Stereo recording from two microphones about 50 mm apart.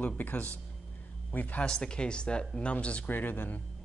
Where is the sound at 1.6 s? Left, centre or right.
Centre.